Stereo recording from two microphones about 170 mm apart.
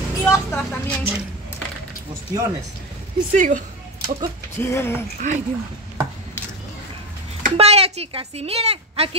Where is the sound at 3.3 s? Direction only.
50° right (ahead or behind).